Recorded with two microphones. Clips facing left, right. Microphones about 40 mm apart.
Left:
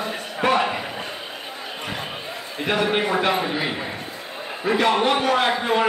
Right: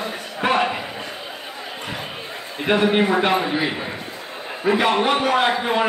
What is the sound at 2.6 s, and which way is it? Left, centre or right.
A man's voice, centre.